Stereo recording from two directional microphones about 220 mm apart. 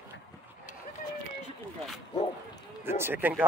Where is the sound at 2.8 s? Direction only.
10° right (ahead or behind).